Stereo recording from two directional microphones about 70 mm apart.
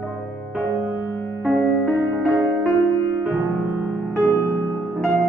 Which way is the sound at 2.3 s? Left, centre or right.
Right.